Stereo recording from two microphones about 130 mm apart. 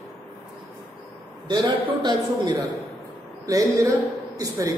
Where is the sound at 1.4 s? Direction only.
35° right (ahead or behind).